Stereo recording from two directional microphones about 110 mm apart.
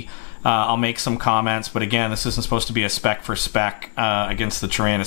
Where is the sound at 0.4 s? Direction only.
10° left (ahead or behind).